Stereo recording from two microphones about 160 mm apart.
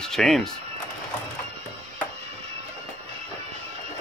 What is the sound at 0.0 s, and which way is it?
Speech, centre (ahead or behind).